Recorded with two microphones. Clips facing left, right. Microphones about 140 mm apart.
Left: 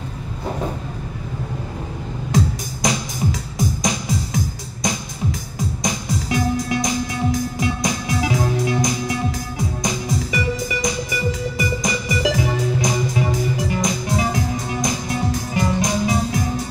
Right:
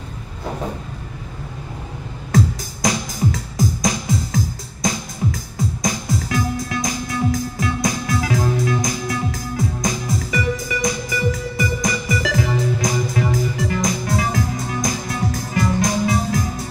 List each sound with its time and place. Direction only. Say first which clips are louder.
2.3 s music: right 2 dB; 25° left (ahead or behind)